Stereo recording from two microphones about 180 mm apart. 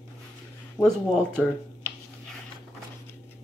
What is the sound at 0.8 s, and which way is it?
Speech, 5° left (ahead or behind).